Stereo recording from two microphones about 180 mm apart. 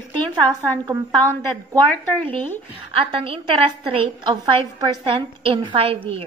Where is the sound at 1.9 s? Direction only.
10° left (ahead or behind).